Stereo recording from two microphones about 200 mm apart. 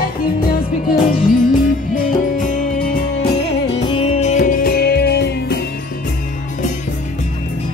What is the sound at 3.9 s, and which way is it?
Music, 30° left (ahead or behind).